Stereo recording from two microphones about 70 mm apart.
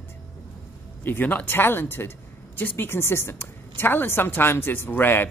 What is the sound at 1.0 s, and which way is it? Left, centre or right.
Speech, left.